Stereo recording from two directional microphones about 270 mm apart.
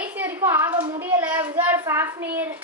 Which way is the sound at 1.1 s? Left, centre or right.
Centre.